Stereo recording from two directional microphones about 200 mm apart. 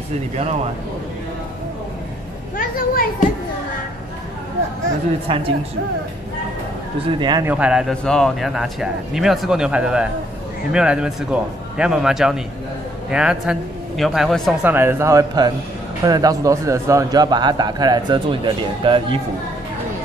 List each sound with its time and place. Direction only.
0.4 s speech: 30° right (ahead or behind)
2.5 s speech: 45° left (ahead or behind)
5.3 s a man's voice: 25° right (ahead or behind)
7.1 s a man's voice: 20° right (ahead or behind)
7.4 s a man's voice: 5° right (ahead or behind)
14.7 s a man's voice: 10° right (ahead or behind)